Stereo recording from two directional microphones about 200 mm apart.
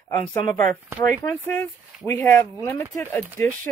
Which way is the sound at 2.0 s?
10° left (ahead or behind).